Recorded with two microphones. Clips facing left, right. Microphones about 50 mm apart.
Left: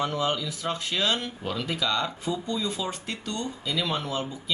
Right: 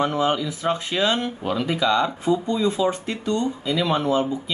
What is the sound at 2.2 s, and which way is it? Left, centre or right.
Speech, right.